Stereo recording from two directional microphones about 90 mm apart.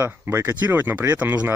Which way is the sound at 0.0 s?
25° right (ahead or behind).